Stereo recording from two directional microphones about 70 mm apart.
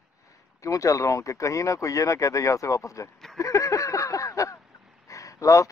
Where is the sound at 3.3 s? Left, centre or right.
Left.